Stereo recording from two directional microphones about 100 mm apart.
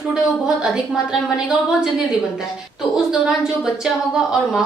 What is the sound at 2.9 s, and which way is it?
A woman's voice, 5° right (ahead or behind).